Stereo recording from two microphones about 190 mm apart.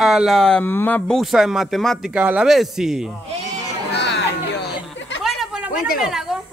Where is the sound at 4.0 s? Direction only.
60° left (ahead or behind).